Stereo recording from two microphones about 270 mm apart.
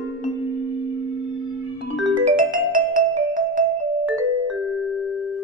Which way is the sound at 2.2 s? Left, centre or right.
Right.